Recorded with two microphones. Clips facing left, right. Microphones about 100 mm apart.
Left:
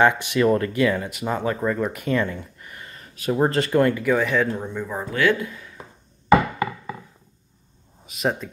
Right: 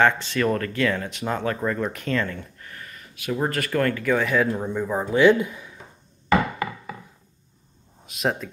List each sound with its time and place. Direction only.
0.0 s speech: 15° left (ahead or behind)
2.9 s speech: 35° left (ahead or behind); by 5.8 s 15° right (ahead or behind)
6.2 s a sound: 15° left (ahead or behind)
8.0 s speech: centre (ahead or behind)